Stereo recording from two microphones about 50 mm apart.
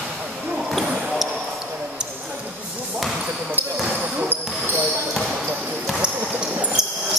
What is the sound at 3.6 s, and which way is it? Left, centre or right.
Basketball bounce, right.